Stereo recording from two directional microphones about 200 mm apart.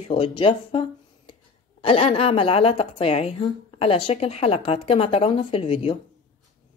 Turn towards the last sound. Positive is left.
turn(degrees=25)  # may be behind; listen again after turning